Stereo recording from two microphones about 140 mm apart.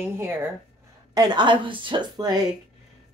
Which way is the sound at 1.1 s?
30° right (ahead or behind).